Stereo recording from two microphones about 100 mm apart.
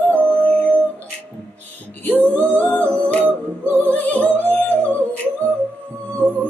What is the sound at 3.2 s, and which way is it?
Music, 25° right (ahead or behind).